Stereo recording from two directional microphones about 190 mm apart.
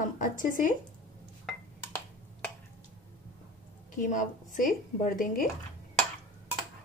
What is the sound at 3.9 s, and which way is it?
A woman's voice, 45° left (ahead or behind).